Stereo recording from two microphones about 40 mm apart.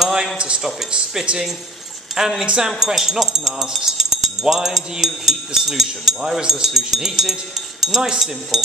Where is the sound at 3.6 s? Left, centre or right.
Centre.